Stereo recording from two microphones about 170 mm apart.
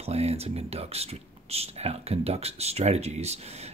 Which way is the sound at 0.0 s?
40° right (ahead or behind).